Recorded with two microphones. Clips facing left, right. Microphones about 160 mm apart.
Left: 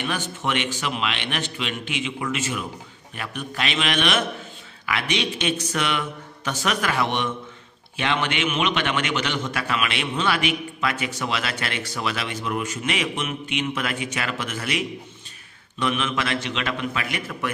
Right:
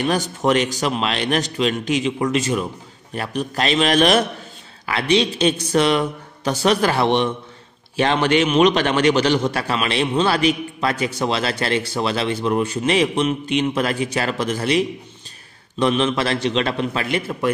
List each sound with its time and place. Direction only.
0.0 s a man's voice: 40° right (ahead or behind)